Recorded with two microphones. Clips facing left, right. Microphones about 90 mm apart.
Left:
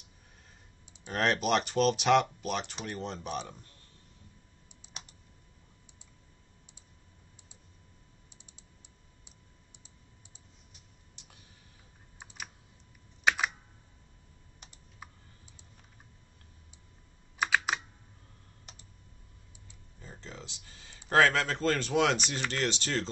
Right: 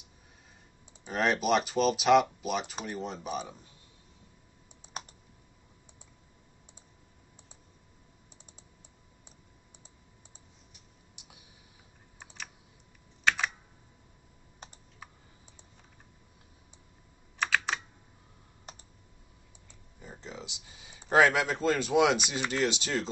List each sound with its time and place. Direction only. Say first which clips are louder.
1.0 s speech: right 1 dB; 5° right (ahead or behind)
11.1 s clicking: right 2 dB; 15° right (ahead or behind)
17.4 s computer keyboard: left 1 dB; 10° left (ahead or behind)
20.0 s a sound: right 3 dB; 15° right (ahead or behind)
21.1 s speech: right 1 dB; 15° right (ahead or behind)